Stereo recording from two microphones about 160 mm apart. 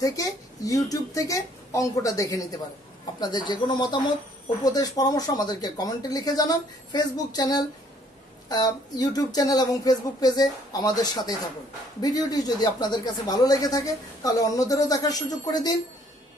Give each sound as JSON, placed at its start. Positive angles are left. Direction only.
{"t": 0.0, "sound": "speech", "side_deg": 20}